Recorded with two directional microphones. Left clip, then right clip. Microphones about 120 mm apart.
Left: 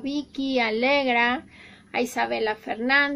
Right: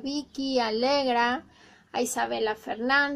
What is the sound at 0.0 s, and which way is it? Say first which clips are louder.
Speech: left 3 dB; 45° left (ahead or behind).